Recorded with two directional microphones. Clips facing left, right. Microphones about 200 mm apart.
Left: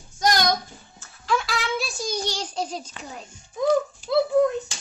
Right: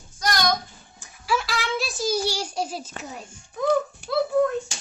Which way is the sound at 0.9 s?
10° right (ahead or behind).